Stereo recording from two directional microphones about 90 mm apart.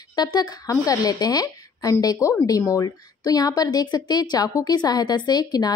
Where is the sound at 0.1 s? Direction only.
50° left (ahead or behind).